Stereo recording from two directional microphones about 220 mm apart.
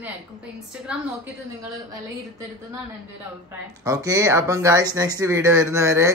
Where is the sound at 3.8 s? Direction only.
15° right (ahead or behind).